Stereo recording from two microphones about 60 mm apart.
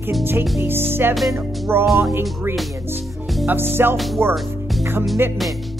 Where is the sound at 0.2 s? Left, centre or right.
Right.